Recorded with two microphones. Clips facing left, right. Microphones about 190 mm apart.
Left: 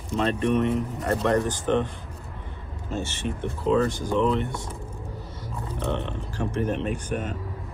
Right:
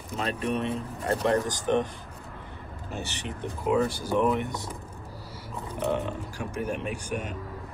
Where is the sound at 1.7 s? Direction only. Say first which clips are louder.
Left 1 dB; 15° right (ahead or behind).